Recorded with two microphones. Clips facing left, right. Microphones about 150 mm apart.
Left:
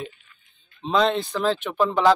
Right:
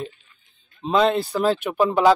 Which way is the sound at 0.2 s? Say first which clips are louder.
Left 1 dB; 40° right (ahead or behind).